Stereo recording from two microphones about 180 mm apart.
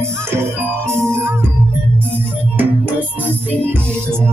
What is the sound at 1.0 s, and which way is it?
Music, 15° right (ahead or behind).